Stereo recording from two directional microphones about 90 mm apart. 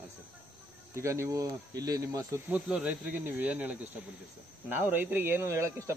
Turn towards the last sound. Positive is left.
turn(degrees=-30)  # may be behind; listen again after turning